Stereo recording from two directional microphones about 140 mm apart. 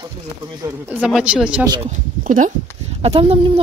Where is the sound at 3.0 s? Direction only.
45° right (ahead or behind).